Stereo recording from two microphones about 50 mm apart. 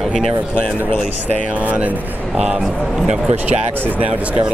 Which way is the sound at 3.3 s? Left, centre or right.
Right.